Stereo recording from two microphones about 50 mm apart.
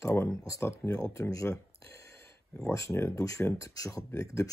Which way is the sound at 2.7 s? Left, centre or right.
Left.